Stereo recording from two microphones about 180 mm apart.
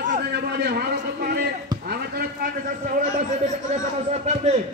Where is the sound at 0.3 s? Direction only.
65° right (ahead or behind).